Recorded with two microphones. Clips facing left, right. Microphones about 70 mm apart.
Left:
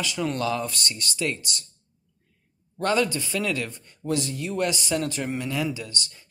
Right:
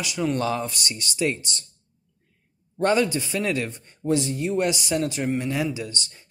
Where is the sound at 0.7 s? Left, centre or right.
Centre.